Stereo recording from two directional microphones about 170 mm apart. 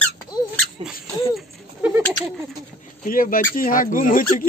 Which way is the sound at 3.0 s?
55° left (ahead or behind).